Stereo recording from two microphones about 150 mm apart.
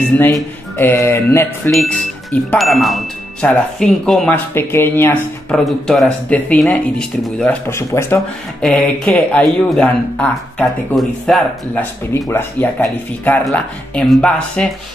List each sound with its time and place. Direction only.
0.2 s speech: 15° left (ahead or behind)
1.7 s speech: centre (ahead or behind)
5.5 s speech: centre (ahead or behind)
7.7 s speech: 15° left (ahead or behind)
8.5 s speech: 5° left (ahead or behind)
12.3 s speech: 15° left (ahead or behind)